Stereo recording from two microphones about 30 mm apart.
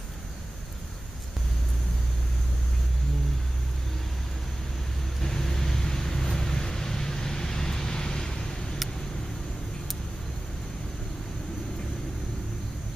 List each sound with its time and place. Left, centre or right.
5.2 s vehicle: centre